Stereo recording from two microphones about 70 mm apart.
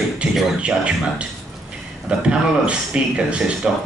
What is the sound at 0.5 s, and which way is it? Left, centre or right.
Speech, centre.